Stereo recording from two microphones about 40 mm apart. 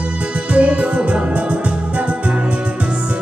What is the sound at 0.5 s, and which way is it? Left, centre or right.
Music, right.